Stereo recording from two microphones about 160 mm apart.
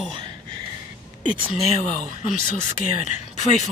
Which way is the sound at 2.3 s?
50° left (ahead or behind).